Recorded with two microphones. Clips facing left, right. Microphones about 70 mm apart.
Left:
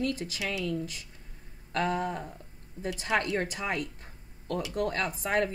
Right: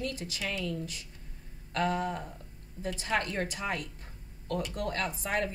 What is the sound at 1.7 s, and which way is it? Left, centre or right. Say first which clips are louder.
A woman's voice: left 1 dB; left.